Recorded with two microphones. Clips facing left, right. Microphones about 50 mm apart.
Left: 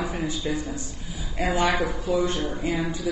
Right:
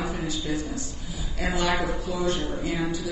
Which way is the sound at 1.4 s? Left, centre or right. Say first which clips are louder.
Left 3 dB; left.